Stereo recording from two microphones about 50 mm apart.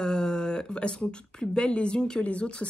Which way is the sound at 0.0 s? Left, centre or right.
Centre.